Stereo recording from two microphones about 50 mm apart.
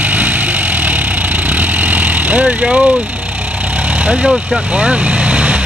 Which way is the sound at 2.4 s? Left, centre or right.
Centre.